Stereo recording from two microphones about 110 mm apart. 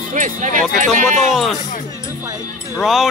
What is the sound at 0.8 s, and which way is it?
Speech, 90° right.